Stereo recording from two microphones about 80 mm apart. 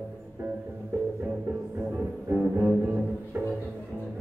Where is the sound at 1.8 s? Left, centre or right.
Right.